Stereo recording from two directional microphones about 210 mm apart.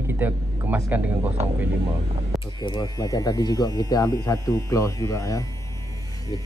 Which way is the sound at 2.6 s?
20° left (ahead or behind).